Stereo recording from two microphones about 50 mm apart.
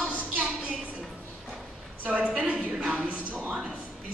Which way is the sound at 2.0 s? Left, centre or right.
Right.